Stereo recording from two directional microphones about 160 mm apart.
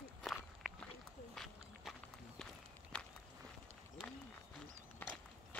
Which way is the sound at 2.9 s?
5° left (ahead or behind).